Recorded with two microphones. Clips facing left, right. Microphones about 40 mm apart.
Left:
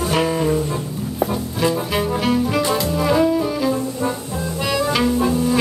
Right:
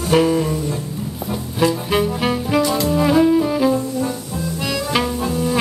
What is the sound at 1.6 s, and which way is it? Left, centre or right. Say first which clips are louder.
Music: right 3 dB; centre.